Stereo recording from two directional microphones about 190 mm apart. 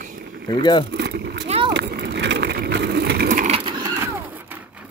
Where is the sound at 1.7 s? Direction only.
65° right (ahead or behind); by 3.5 s 45° right (ahead or behind).